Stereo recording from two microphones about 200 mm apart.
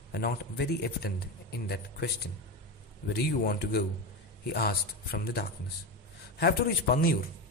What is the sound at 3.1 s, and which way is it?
A man's voice, 50° left (ahead or behind).